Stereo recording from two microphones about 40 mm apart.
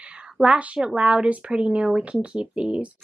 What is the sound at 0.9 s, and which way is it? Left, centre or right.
Speech, right.